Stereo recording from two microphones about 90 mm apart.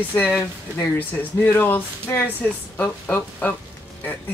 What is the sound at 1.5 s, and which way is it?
Speech, 25° left (ahead or behind).